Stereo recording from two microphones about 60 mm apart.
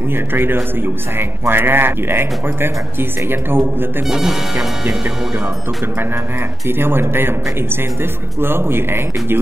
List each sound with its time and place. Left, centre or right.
0.1 s a man's voice: right
4.1 s speech: centre
6.7 s a man's voice: right